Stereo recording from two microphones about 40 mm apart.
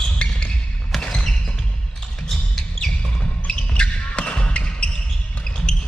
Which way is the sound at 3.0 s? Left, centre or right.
Left.